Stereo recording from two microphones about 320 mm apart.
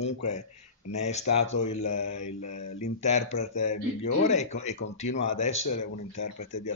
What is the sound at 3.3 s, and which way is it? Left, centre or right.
Speech, left.